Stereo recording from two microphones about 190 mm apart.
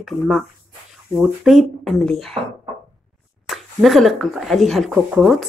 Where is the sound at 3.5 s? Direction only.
Centre (ahead or behind).